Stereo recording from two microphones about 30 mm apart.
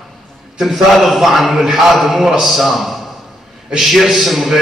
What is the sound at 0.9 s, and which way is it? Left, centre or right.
A man's voice, centre.